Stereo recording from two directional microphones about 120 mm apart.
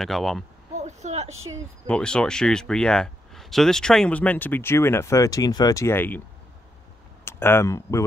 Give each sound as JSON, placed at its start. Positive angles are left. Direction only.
{"t": 0.0, "sound": "speech", "side_deg": 0}
{"t": 0.7, "sound": "vehicle", "side_deg": -75}
{"t": 1.9, "sound": "speech", "side_deg": 5}
{"t": 7.2, "sound": "speech", "side_deg": 20}